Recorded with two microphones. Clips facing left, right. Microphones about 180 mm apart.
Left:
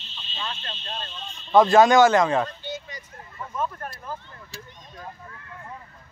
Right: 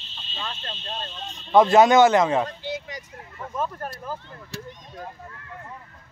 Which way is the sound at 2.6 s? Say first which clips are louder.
Right 3 dB; 90° right.